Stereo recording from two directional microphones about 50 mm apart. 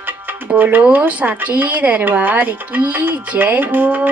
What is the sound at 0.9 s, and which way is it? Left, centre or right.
Speech, right.